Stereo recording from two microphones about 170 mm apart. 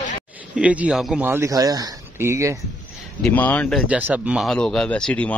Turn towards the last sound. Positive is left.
turn(degrees=5)  # may be behind; listen again after turning